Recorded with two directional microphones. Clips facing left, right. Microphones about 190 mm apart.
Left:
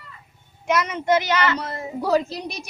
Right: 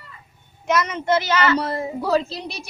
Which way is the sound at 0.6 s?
10° left (ahead or behind).